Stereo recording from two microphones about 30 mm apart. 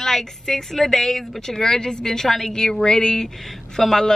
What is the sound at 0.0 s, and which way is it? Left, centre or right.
Speech, centre.